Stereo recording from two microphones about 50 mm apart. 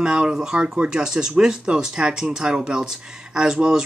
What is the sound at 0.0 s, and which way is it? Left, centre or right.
Speech, centre.